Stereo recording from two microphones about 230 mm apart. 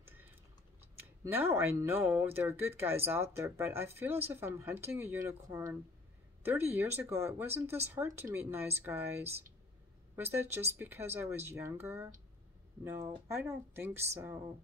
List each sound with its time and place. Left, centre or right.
0.0 s typing: centre
1.2 s speech: centre